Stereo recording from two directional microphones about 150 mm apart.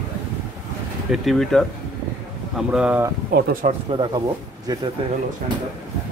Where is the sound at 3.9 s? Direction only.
30° right (ahead or behind).